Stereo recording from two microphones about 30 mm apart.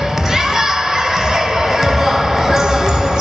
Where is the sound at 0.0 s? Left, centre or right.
Centre.